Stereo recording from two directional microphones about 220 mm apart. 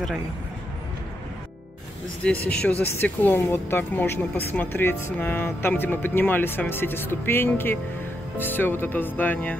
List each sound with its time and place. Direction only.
2.2 s speech: 5° left (ahead or behind)